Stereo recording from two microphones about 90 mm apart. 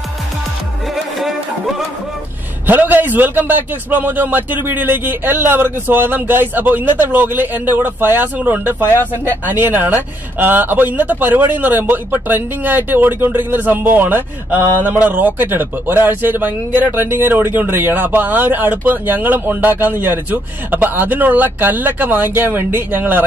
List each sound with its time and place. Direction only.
2.6 s a man's voice: 20° right (ahead or behind)